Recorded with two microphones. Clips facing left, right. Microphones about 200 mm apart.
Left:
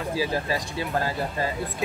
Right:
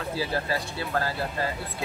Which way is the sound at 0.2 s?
15° left (ahead or behind).